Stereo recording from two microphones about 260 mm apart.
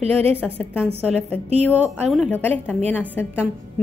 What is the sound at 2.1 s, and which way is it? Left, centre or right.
Speech, centre.